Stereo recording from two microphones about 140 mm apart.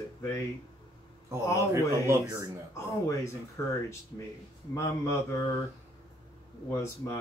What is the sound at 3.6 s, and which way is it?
Speech, 20° left (ahead or behind).